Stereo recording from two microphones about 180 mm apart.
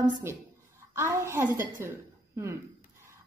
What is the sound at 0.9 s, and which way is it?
A woman's voice, 15° right (ahead or behind).